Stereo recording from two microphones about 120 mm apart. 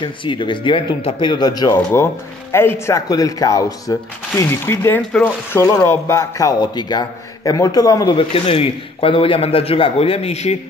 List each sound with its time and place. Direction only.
0.0 s a man's voice: 45° left (ahead or behind)
2.5 s speech: 20° left (ahead or behind)
3.1 s speech: 30° left (ahead or behind)
8.2 s a man's voice: 50° left (ahead or behind)